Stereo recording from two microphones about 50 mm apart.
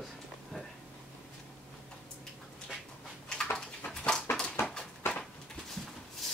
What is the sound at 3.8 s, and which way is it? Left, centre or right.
Dog, left.